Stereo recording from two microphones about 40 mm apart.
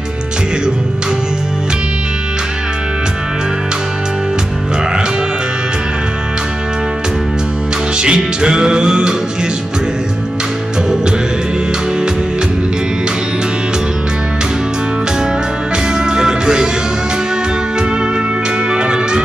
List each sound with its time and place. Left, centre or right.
8.0 s music: right
16.0 s music: centre
18.7 s music: right